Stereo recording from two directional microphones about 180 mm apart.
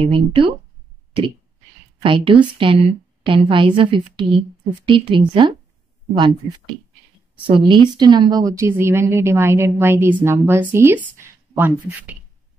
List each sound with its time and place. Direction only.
0.0 s a woman's voice: 30° right (ahead or behind)
2.0 s a woman's voice: 25° right (ahead or behind); by 12.2 s 10° right (ahead or behind)